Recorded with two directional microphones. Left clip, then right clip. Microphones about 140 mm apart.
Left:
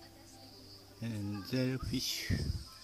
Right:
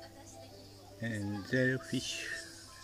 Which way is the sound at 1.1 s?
25° left (ahead or behind).